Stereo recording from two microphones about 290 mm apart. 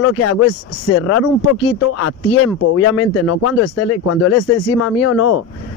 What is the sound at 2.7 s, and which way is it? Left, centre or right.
Speech, left.